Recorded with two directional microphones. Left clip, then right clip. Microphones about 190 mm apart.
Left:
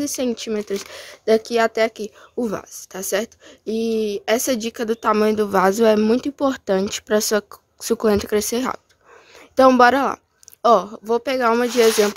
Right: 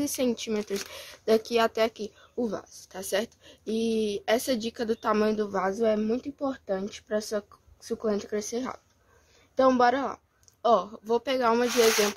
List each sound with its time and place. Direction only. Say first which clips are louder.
0.0 s speech: left 5 dB; 20° left (ahead or behind)
5.5 s a woman's voice: left 11 dB; 50° left (ahead or behind); by 11.7 s 30° left (ahead or behind)